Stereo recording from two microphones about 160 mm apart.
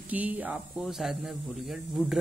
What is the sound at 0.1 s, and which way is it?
Speech, 10° right (ahead or behind).